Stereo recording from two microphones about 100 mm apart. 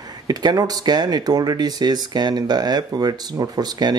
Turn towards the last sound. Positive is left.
turn(degrees=-40)  # may be behind; listen again after turning